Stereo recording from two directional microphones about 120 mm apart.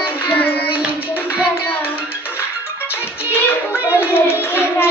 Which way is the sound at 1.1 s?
15° left (ahead or behind).